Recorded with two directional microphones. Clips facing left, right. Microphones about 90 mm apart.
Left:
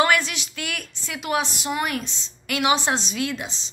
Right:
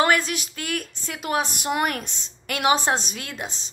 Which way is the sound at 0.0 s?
40° right (ahead or behind).